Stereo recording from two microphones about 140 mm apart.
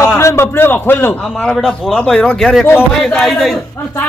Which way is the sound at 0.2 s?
20° left (ahead or behind).